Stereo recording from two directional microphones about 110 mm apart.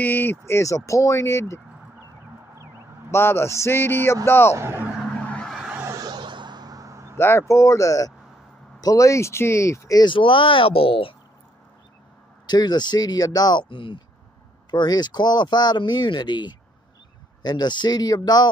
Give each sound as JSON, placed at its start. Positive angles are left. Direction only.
{"t": 0.0, "sound": "speech", "side_deg": 20}
{"t": 3.1, "sound": "speech", "side_deg": 20}
{"t": 4.6, "sound": "speech", "side_deg": -25}
{"t": 5.1, "sound": "a sound", "side_deg": 10}
{"t": 5.5, "sound": "a sound", "side_deg": -5}
{"t": 5.8, "sound": "a sound", "side_deg": -30}
{"t": 7.2, "sound": "speech", "side_deg": 25}
{"t": 10.0, "sound": "speech", "side_deg": 50}
{"t": 12.4, "sound": "speech", "side_deg": 40}